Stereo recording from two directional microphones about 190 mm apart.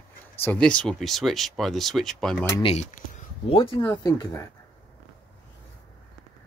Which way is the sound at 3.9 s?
15° left (ahead or behind).